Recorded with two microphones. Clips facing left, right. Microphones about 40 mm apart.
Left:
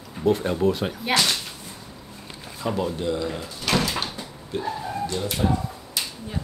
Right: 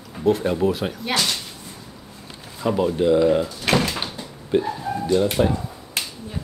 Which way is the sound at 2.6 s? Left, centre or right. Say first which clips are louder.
Right 6 dB; centre.